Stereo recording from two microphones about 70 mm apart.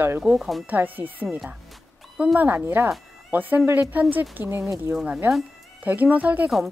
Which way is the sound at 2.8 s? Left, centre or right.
Right.